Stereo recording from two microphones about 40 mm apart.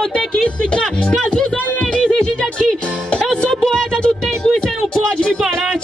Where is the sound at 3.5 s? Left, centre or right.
Centre.